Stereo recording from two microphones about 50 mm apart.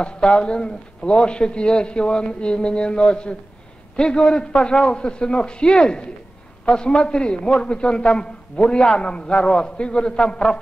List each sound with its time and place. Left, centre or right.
0.0 s a man's voice: centre